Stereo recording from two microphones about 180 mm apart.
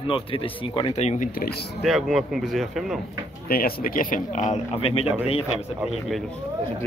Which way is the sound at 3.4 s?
55° left (ahead or behind).